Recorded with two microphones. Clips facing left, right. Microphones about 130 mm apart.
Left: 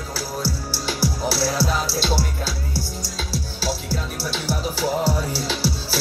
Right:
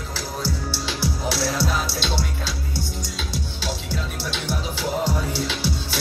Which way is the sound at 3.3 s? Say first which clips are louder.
Left 4 dB; 35° left (ahead or behind).